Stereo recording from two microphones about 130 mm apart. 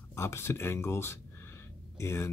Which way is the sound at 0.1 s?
20° left (ahead or behind).